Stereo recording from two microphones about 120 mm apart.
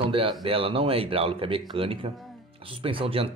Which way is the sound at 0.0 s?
50° right (ahead or behind).